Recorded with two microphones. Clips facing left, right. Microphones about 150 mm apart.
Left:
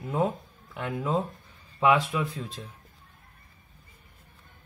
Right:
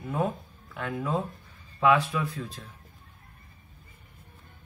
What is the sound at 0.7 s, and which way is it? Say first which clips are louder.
A man's voice: left 2 dB; 20° left (ahead or behind).